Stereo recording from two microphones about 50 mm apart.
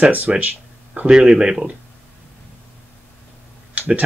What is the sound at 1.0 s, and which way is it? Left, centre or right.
Speech, centre.